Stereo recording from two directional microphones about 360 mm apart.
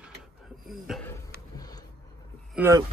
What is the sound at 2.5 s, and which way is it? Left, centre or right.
Speech, centre.